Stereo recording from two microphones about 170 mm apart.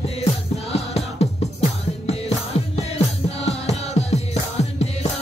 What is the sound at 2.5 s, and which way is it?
Music, 35° left (ahead or behind).